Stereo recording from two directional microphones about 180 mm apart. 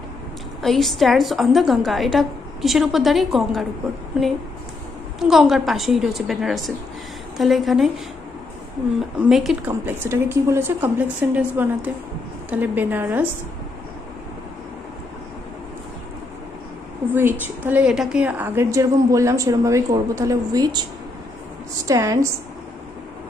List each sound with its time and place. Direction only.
0.6 s a woman's voice: centre (ahead or behind)
5.2 s a woman's voice: centre (ahead or behind)
9.3 s a woman's voice: centre (ahead or behind)
9.7 s a woman's voice: 15° right (ahead or behind)
17.1 s a woman's voice: 10° right (ahead or behind)
21.8 s speech: 20° right (ahead or behind)